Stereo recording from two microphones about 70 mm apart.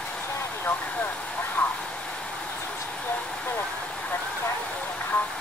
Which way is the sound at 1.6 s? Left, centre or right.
Left.